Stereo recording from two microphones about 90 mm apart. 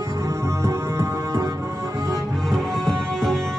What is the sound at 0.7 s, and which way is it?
Music, 35° right (ahead or behind).